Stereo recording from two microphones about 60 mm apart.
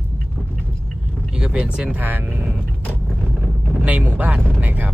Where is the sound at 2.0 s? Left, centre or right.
Right.